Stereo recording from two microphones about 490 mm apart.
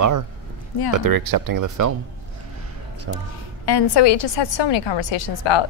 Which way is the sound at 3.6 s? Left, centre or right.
Left.